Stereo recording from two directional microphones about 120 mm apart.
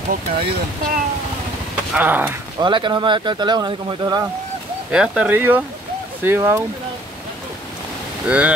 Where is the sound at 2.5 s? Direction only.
40° right (ahead or behind).